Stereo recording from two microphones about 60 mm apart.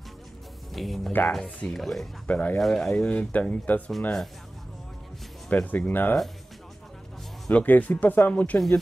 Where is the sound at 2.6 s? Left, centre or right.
Centre.